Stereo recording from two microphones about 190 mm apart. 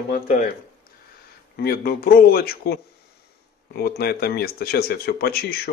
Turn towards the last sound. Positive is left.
turn(degrees=55)  # may be behind; listen again after turning